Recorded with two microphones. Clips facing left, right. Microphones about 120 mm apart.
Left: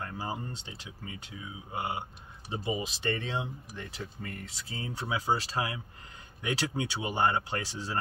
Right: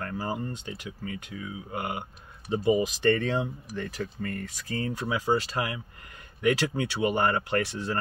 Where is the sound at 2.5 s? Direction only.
20° left (ahead or behind).